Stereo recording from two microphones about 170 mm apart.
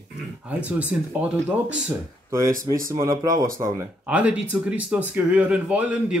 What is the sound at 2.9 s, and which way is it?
Speech, 20° right (ahead or behind).